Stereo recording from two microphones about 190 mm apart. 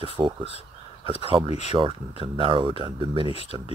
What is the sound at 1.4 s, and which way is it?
Speech, 35° left (ahead or behind).